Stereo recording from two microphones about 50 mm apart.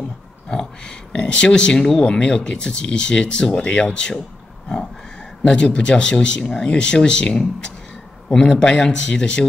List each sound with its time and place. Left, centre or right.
0.5 s speech: centre
5.4 s speech: centre